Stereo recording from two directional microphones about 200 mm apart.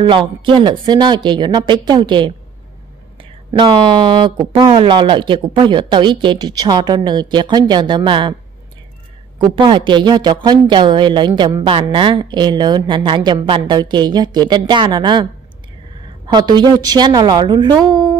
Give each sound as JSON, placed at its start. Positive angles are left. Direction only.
{"t": 0.0, "sound": "a woman's voice", "side_deg": -25}
{"t": 9.4, "sound": "a woman's voice", "side_deg": -25}
{"t": 16.3, "sound": "a woman's voice", "side_deg": -20}